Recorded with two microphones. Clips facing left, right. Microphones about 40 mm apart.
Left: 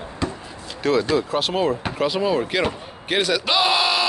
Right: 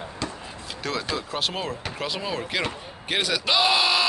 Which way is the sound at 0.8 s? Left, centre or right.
Centre.